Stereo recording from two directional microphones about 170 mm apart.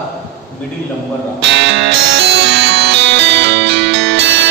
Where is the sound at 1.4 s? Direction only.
90° right.